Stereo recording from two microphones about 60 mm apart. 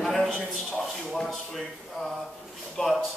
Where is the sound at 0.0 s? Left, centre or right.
Centre.